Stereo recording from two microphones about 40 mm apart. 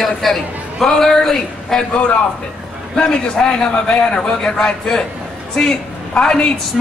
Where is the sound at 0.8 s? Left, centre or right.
Centre.